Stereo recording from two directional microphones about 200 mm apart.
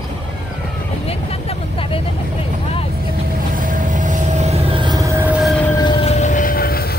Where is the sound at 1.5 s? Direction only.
25° left (ahead or behind).